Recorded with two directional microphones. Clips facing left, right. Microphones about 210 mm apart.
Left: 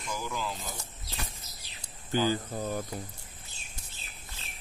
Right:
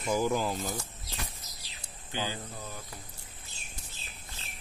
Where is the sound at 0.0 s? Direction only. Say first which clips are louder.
Right 7 dB; 45° right (ahead or behind).